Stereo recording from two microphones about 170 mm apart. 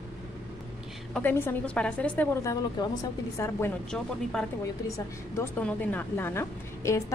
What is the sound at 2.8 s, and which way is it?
Speech, 25° left (ahead or behind).